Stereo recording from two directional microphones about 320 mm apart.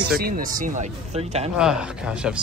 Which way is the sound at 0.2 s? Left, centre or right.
Right.